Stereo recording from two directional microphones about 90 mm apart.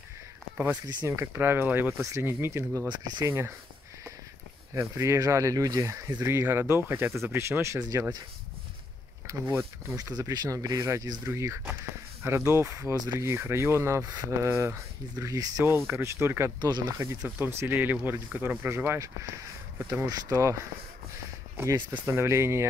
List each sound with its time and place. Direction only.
1.0 s speech: 30° right (ahead or behind)
2.9 s speech: 55° right (ahead or behind)
3.3 s speech: 30° right (ahead or behind)
4.7 s speech: 35° right (ahead or behind)
9.3 s speech: 30° right (ahead or behind)
9.9 s speech: 40° right (ahead or behind)
12.9 s speech: 45° right (ahead or behind)
13.2 s speech: 30° right (ahead or behind)
15.9 s speech: 30° right (ahead or behind)
20.1 s speech: 40° right (ahead or behind)
21.5 s speech: 25° right (ahead or behind)